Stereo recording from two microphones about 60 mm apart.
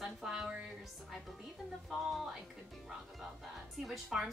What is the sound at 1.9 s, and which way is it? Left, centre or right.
Speech, centre.